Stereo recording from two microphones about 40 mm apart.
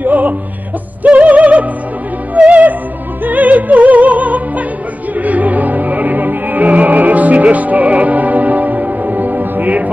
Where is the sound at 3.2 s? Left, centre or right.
Right.